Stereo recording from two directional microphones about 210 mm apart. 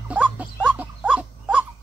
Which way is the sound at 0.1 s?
5° right (ahead or behind).